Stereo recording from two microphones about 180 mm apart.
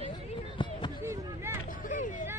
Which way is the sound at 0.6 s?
25° left (ahead or behind).